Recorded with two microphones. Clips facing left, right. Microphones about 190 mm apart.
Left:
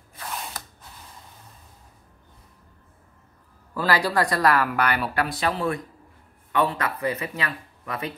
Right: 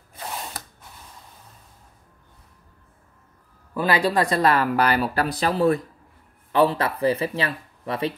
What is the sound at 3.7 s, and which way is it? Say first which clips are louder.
Speech: right 2 dB; 20° right (ahead or behind).